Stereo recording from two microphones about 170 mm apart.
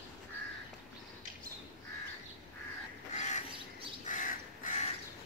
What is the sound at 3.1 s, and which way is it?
Crow, 45° left (ahead or behind).